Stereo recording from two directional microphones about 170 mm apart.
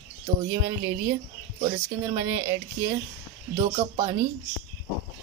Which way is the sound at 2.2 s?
15° right (ahead or behind).